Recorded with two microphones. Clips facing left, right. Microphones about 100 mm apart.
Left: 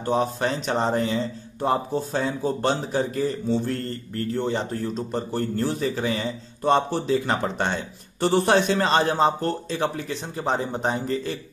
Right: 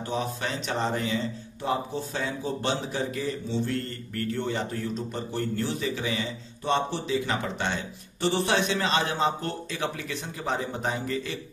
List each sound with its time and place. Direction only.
0.0 s speech: 40° left (ahead or behind)
4.1 s speech: 30° left (ahead or behind)